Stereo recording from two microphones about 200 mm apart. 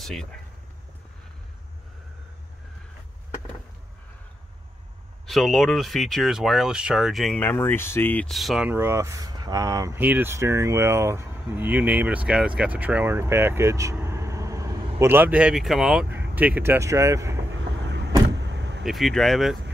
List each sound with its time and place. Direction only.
0.0 s speech: centre (ahead or behind)
5.2 s speech: centre (ahead or behind)
17.7 s vehicle: 60° right (ahead or behind)
18.9 s speech: centre (ahead or behind)